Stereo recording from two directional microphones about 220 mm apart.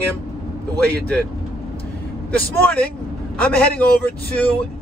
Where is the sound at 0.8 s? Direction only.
5° left (ahead or behind).